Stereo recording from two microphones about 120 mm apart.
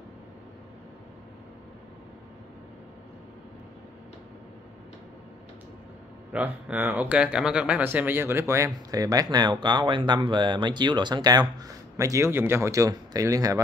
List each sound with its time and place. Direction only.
6.3 s speech: 10° right (ahead or behind); by 13.6 s 30° right (ahead or behind)